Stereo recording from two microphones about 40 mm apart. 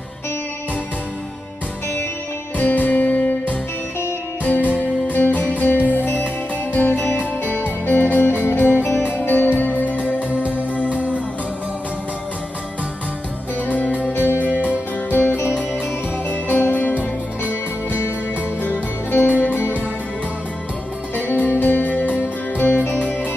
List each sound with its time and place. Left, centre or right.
2.5 s music: left
4.7 s music: left
5.7 s music: left
8.5 s music: left
8.8 s music: left
13.7 s music: left
14.1 s music: left
16.3 s music: left
18.6 s music: left
21.5 s music: left
22.2 s music: left